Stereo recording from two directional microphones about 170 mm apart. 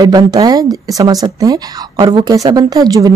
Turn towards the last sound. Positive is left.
turn(degrees=-20)  # may be behind; listen again after turning